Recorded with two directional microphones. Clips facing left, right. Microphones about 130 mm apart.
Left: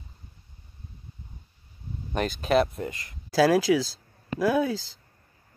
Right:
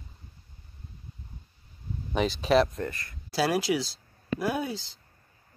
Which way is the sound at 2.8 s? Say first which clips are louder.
Even; 20° left (ahead or behind).